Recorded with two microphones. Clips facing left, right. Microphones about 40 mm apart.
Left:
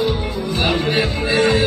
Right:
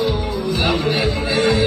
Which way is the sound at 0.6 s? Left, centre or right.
Left.